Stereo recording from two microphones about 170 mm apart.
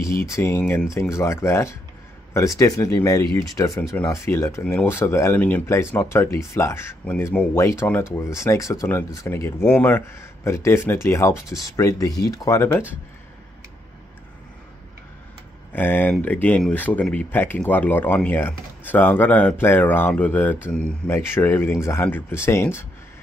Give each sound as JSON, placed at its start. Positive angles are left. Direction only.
{"t": 0.0, "sound": "speech", "side_deg": 15}
{"t": 15.7, "sound": "speech", "side_deg": 10}